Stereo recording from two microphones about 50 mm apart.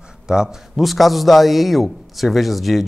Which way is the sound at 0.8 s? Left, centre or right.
Centre.